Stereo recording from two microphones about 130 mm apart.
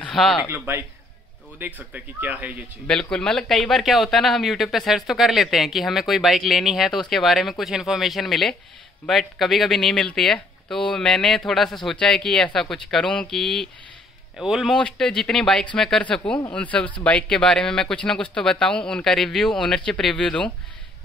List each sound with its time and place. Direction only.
0.0 s a sound: centre (ahead or behind)
0.5 s speech: 15° right (ahead or behind)
2.9 s speech: 5° left (ahead or behind)